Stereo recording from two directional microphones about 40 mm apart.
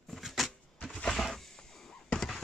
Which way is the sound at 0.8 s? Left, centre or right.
Left.